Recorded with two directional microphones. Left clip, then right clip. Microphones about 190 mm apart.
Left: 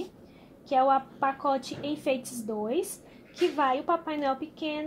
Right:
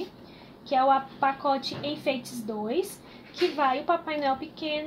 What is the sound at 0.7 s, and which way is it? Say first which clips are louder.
A woman's voice: right 1 dB; 40° left (ahead or behind).